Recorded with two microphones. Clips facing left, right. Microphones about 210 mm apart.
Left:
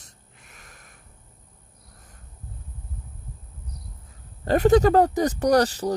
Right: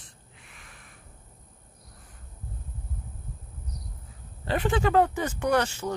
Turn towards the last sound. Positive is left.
turn(degrees=35)  # may be behind; listen again after turning